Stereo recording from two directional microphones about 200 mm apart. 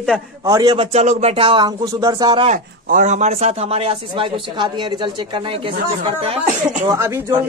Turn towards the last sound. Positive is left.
turn(degrees=-15)  # may be behind; listen again after turning